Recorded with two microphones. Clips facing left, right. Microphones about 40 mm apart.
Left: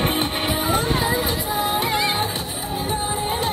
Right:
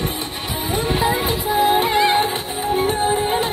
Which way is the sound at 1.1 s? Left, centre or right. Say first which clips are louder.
Right 3 dB; right.